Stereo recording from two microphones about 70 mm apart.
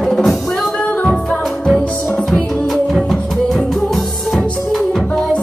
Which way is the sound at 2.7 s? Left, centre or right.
Centre.